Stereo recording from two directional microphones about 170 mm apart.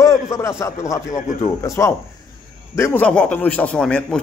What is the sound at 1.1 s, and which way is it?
Speech, 45° left (ahead or behind).